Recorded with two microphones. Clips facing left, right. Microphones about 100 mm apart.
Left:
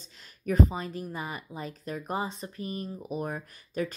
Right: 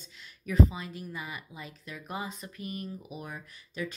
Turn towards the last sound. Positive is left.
turn(degrees=45)  # may be behind; listen again after turning